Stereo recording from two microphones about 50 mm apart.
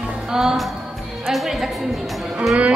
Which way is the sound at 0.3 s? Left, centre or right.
Centre.